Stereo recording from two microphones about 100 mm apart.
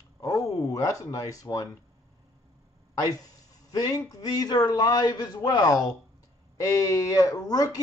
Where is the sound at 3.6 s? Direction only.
40° left (ahead or behind).